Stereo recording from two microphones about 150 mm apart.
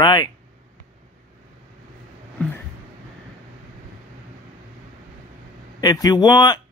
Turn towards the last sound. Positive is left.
turn(degrees=25)  # may be behind; listen again after turning